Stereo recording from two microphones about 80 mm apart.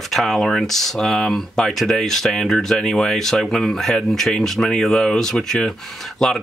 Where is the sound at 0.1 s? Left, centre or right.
Centre.